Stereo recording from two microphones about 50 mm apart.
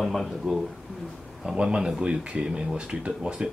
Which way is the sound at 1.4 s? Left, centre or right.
Centre.